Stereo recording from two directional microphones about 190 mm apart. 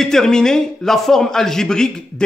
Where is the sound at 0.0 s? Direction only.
5° left (ahead or behind).